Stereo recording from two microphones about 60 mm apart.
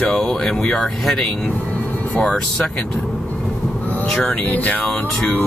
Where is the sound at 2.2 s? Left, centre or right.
Centre.